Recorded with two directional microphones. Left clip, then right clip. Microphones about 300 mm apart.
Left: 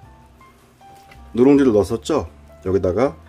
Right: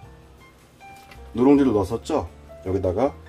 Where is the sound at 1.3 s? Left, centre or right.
Left.